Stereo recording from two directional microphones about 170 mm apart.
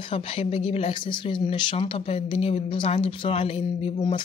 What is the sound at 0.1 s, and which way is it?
Speech, 35° left (ahead or behind).